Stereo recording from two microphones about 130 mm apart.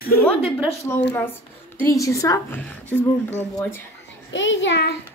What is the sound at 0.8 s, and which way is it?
A woman's voice, 15° left (ahead or behind).